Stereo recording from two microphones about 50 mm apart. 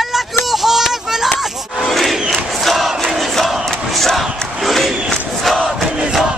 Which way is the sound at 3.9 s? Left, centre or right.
Centre.